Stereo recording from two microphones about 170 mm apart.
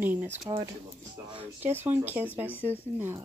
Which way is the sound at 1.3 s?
35° right (ahead or behind).